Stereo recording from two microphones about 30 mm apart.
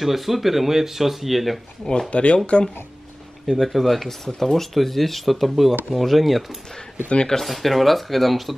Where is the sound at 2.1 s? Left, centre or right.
Left.